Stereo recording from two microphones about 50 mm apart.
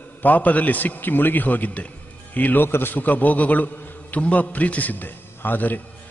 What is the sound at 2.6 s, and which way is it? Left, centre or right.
Speech, left.